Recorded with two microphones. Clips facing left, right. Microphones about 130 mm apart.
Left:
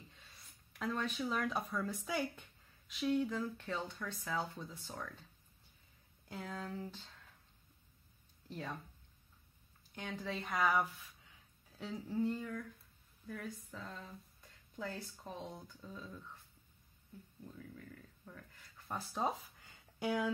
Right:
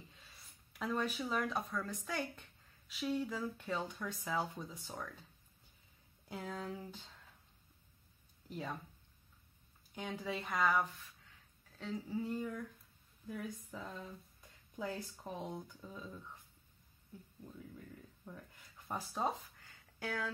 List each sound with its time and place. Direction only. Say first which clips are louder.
0.7 s speech: right 1 dB; 5° right (ahead or behind)
6.2 s speech: right 1 dB; 10° right (ahead or behind)
8.5 s speech: right 1 dB; 10° right (ahead or behind)
9.9 s speech: right 1 dB; 10° right (ahead or behind)
14.8 s speech: right 2 dB; 10° right (ahead or behind)
17.6 s speech: right 1 dB; 15° right (ahead or behind)
19.6 s a sound: left 5 dB; 15° left (ahead or behind)